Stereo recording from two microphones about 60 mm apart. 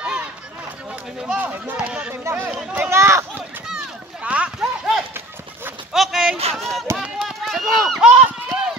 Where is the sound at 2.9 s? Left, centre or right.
Right.